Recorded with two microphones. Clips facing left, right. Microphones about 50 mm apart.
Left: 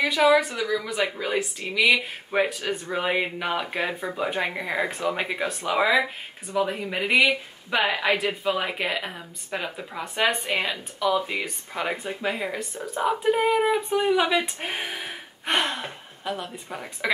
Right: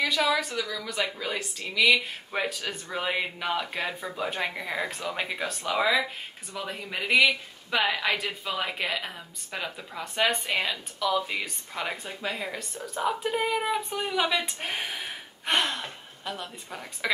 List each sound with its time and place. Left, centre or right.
0.0 s speech: centre